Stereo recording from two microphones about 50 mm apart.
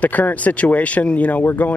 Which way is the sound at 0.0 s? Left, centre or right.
Left.